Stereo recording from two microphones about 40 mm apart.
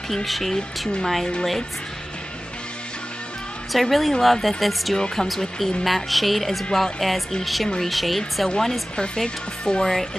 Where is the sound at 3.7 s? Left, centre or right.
Centre.